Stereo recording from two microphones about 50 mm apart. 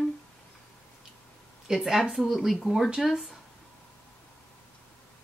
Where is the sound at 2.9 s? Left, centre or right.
Centre.